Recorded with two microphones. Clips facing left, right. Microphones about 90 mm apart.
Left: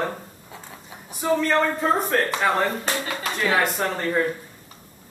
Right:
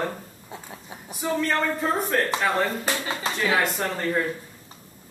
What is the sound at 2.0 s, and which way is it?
Speech, centre (ahead or behind).